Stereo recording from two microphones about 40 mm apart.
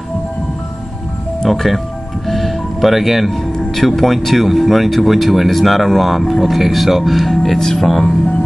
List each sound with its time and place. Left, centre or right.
1.5 s speech: centre
7.4 s speech: centre